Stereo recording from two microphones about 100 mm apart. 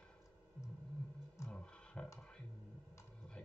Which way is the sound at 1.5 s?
10° left (ahead or behind).